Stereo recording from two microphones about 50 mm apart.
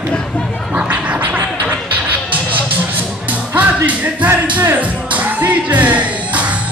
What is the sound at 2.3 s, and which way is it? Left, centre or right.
Music, right.